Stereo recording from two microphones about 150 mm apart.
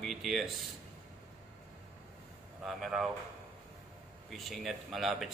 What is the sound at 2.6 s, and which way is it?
Speech, centre (ahead or behind).